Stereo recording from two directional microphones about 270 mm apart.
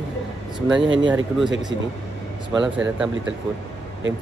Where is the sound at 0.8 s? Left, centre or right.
Right.